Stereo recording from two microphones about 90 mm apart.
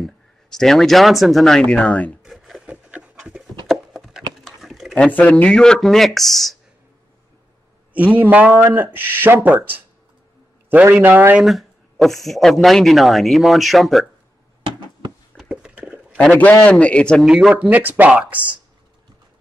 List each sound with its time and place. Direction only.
0.0 s speech: 5° left (ahead or behind)
2.2 s a sound: centre (ahead or behind)
2.6 s pant: 15° right (ahead or behind)
3.6 s horse: centre (ahead or behind)
4.5 s a sound: centre (ahead or behind)
4.9 s speech: 15° left (ahead or behind)
7.9 s speech: 15° right (ahead or behind)
11.4 s speech: centre (ahead or behind)
14.6 s a sound: 70° right (ahead or behind)
15.3 s a sound: 10° right (ahead or behind)
16.3 s a man's voice: 20° left (ahead or behind)
17.2 s speech: 5° right (ahead or behind)
17.6 s speech: 20° right (ahead or behind)